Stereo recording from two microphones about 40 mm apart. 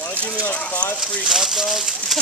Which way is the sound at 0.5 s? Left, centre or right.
Left.